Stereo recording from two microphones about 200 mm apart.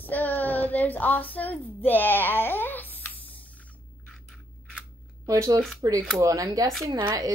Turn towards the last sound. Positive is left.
turn(degrees=-20)  # may be behind; listen again after turning